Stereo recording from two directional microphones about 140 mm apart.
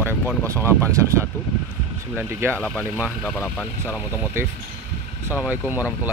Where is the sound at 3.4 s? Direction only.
10° right (ahead or behind).